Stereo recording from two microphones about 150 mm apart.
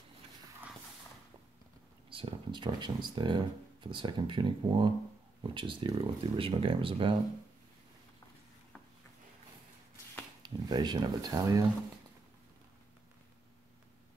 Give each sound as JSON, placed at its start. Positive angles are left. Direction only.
{"t": 2.0, "sound": "speech", "side_deg": -35}
{"t": 10.4, "sound": "speech", "side_deg": -30}